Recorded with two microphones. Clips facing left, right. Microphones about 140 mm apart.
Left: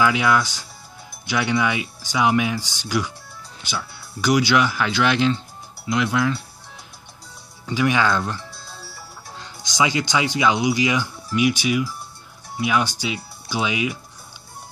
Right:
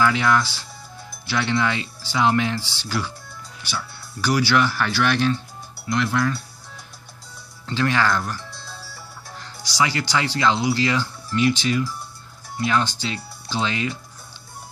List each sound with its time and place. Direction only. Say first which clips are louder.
0.0 s speech: left 1 dB; 10° left (ahead or behind)
7.6 s speech: left 2 dB; 10° left (ahead or behind)
9.4 s speech: left 1 dB; 20° left (ahead or behind)